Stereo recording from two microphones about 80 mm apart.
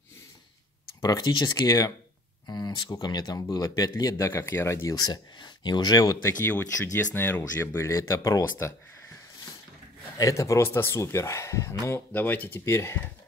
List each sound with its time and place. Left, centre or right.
1.0 s speech: left
4.9 s speech: left
6.2 s speech: left
10.1 s speech: left
12.1 s speech: left